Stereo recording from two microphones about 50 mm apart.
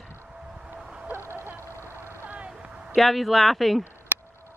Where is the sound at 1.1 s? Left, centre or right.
Right.